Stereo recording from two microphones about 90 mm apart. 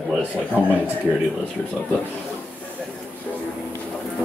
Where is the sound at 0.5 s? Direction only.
20° left (ahead or behind).